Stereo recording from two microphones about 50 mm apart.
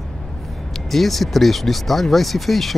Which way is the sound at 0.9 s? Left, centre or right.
Centre.